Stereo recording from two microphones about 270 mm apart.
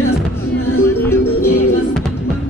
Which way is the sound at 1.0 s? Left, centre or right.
Centre.